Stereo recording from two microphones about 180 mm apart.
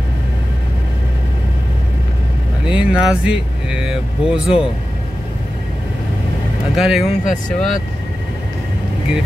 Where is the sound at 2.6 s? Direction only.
5° right (ahead or behind).